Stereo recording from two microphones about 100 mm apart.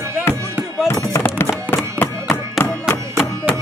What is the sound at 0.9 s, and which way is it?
Music, 30° left (ahead or behind).